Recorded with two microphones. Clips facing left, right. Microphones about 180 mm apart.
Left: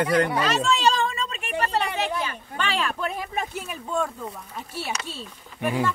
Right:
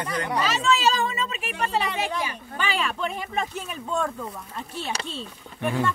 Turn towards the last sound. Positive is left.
turn(degrees=5)  # may be behind; listen again after turning